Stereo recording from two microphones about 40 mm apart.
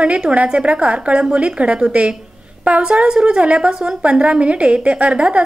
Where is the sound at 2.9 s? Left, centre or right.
Centre.